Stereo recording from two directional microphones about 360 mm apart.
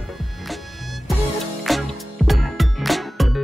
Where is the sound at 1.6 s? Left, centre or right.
Centre.